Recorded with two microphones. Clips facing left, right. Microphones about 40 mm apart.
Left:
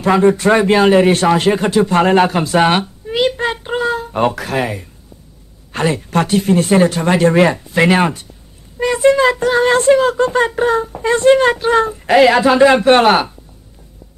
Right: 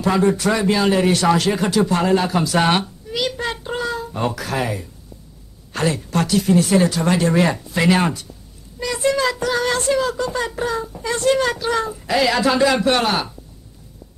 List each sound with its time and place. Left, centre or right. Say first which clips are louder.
0.0 s speech: left 5 dB; left
2.6 s speech: left 6 dB; left
3.1 s child singing: left 8 dB; left
4.0 s a woman's voice: left 7 dB; left
7.4 s speech: left 5 dB; left